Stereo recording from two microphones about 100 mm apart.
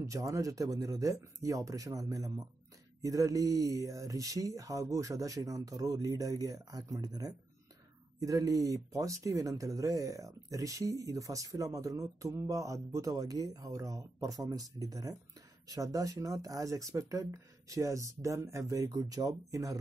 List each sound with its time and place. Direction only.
0.0 s speech: 35° right (ahead or behind)